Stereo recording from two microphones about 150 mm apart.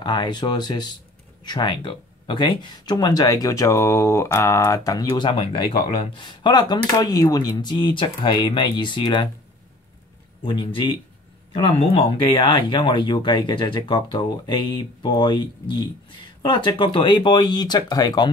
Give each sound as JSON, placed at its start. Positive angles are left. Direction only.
{"t": 0.0, "sound": "speech", "side_deg": 30}
{"t": 10.4, "sound": "speech", "side_deg": 30}